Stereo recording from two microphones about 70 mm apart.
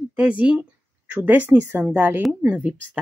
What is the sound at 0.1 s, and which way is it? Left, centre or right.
Speech, right.